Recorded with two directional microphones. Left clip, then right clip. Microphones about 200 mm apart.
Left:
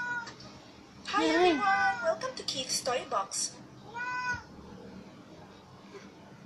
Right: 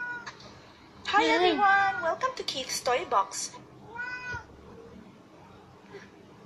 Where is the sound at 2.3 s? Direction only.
90° right.